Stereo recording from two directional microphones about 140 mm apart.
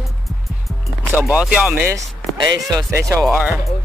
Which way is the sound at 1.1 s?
10° right (ahead or behind).